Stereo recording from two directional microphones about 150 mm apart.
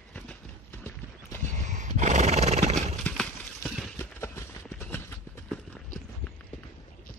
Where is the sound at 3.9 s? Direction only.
15° left (ahead or behind).